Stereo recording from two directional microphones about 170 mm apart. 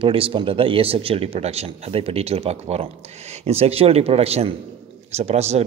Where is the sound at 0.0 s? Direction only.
30° right (ahead or behind).